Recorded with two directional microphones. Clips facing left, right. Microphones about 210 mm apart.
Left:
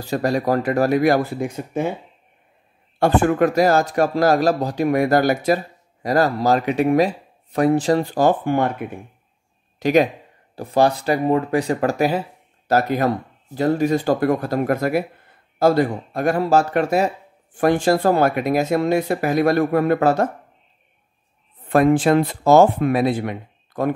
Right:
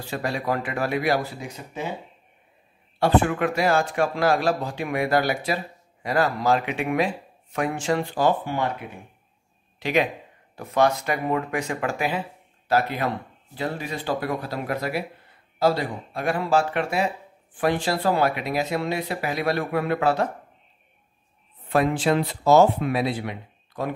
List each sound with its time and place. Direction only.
0.0 s speech: 40° left (ahead or behind)
3.0 s speech: 45° left (ahead or behind)
10.5 s speech: 30° left (ahead or behind)
21.6 s speech: 50° left (ahead or behind)